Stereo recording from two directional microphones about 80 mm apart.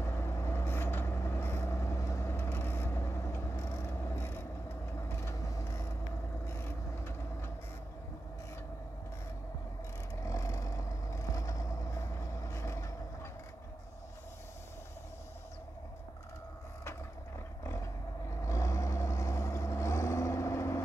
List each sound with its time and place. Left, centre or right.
0.0 s vehicle: left
10.2 s vehicle: left
18.4 s vehicle: left